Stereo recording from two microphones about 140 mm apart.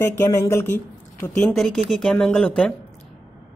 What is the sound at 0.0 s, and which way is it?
Speech, 20° left (ahead or behind).